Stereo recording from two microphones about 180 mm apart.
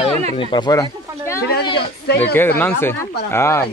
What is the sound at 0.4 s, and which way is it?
Speech, 25° left (ahead or behind).